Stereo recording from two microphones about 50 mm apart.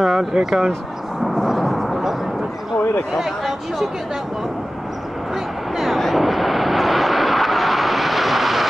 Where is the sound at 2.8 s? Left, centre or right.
Left.